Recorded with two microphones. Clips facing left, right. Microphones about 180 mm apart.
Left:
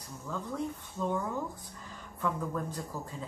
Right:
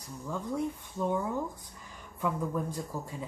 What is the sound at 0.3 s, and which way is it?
Speech, 15° right (ahead or behind).